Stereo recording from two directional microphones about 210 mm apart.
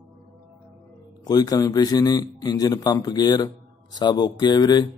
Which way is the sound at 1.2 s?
20° left (ahead or behind).